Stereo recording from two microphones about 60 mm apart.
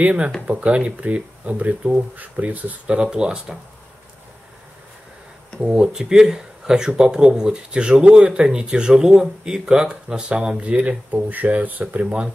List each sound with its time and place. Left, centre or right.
0.0 s speech: right
3.0 s speech: centre
5.6 s speech: centre